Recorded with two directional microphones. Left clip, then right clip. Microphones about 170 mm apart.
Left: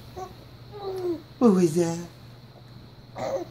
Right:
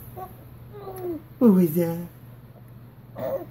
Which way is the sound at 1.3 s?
15° left (ahead or behind).